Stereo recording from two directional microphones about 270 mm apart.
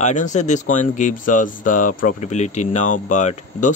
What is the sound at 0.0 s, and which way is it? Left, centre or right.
A man's voice, left.